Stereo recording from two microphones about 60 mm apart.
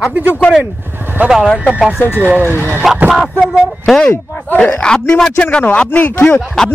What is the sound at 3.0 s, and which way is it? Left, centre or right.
Speech, centre.